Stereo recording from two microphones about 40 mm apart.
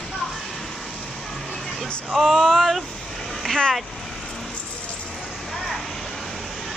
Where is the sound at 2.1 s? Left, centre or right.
Centre.